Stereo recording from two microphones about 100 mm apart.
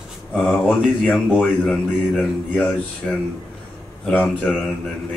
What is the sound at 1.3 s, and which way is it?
Speech, 15° left (ahead or behind).